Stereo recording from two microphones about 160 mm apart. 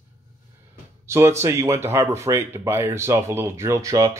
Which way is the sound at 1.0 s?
15° right (ahead or behind).